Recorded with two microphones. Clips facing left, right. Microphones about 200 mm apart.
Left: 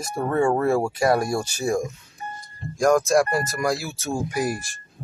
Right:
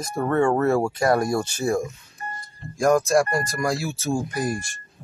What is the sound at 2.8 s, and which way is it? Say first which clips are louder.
Music: even; centre (ahead or behind).